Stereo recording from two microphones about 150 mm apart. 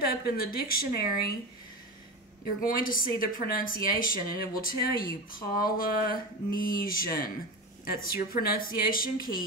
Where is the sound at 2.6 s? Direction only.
70° left (ahead or behind).